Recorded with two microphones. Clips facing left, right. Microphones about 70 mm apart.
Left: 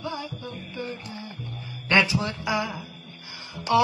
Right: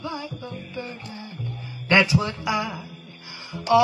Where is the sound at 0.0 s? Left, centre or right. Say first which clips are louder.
Right 1 dB; right.